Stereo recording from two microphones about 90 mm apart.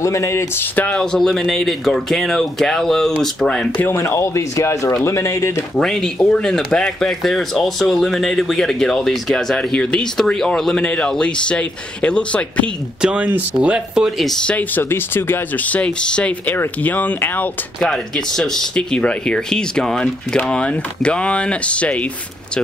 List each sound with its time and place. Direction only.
0.0 s speech: 35° left (ahead or behind)
0.9 s speech: 5° left (ahead or behind)
3.8 s speech: 30° left (ahead or behind)
5.8 s speech: 5° left (ahead or behind)
13.0 s speech: 15° right (ahead or behind)
14.4 s speech: 15° left (ahead or behind)
17.7 s speech: 5° left (ahead or behind)